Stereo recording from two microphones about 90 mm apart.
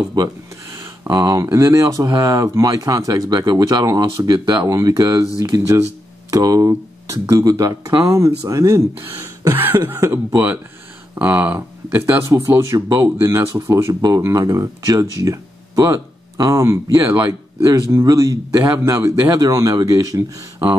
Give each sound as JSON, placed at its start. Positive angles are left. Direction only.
{"t": 0.2, "sound": "speech", "side_deg": -50}
{"t": 1.1, "sound": "speech", "side_deg": -40}
{"t": 9.5, "sound": "speech", "side_deg": -25}
{"t": 9.9, "sound": "speech", "side_deg": -35}
{"t": 11.1, "sound": "speech", "side_deg": -15}